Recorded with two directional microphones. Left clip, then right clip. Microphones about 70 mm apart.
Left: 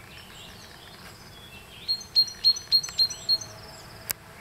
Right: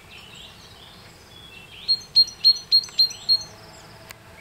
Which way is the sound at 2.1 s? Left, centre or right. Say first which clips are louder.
Right 5 dB; centre.